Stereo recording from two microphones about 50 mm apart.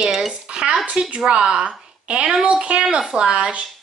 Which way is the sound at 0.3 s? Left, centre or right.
Centre.